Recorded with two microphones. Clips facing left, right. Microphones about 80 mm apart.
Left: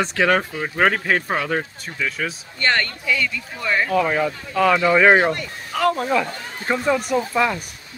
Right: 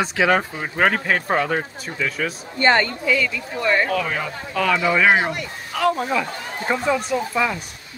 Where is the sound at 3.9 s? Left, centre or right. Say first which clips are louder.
Left 4 dB; centre.